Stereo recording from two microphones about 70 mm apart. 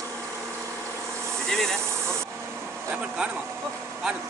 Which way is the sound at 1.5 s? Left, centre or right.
Centre.